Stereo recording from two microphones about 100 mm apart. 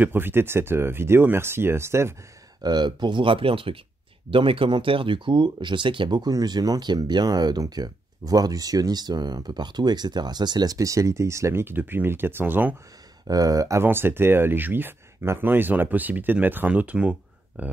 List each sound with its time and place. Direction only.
0.0 s speech: 20° right (ahead or behind)
2.6 s speech: 45° right (ahead or behind); by 12.7 s 20° right (ahead or behind)
13.3 s speech: 35° right (ahead or behind)
13.8 s speech: 20° right (ahead or behind)